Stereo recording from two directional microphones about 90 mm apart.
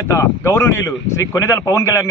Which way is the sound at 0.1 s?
30° left (ahead or behind).